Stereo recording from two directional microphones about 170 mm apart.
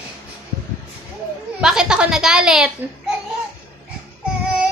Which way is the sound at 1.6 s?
5° right (ahead or behind).